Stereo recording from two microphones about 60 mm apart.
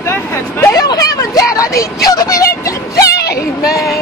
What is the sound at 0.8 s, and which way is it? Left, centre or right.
Speech, left.